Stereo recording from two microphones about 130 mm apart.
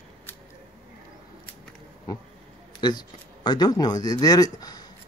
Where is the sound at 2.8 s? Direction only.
35° left (ahead or behind).